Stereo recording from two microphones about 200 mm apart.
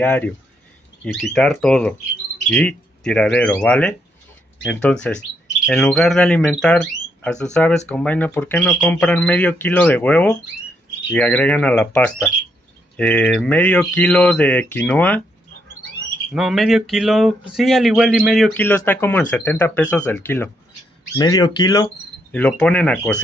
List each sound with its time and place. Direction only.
0.0 s speech: 5° left (ahead or behind)
5.7 s speech: 5° left (ahead or behind)
16.3 s speech: centre (ahead or behind)
21.2 s speech: 20° left (ahead or behind)
22.3 s speech: 5° left (ahead or behind)